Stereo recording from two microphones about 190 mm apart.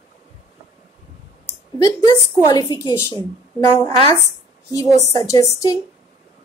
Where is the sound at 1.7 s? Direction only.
20° left (ahead or behind).